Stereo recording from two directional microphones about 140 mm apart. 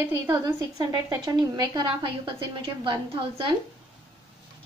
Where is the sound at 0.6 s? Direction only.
30° right (ahead or behind).